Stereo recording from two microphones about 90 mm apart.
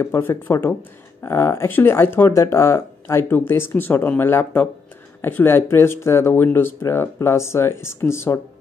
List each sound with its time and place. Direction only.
0.0 s speech: 30° left (ahead or behind)